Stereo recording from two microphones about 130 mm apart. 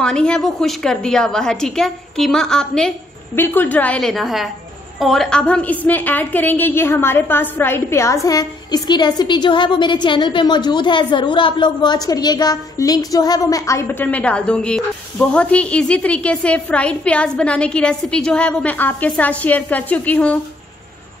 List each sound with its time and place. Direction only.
0.0 s a woman's voice: 5° left (ahead or behind)